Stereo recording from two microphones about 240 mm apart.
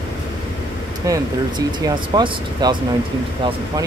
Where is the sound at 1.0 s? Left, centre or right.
Centre.